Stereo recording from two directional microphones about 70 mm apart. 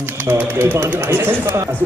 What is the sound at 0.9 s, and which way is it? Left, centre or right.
Speech, right.